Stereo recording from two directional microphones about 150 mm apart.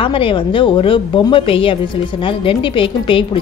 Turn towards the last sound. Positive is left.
turn(degrees=35)  # may be behind; listen again after turning